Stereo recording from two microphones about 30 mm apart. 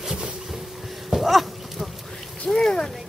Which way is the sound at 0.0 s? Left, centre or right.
Centre.